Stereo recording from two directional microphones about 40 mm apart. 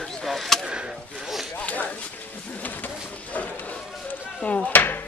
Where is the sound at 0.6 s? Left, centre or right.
Right.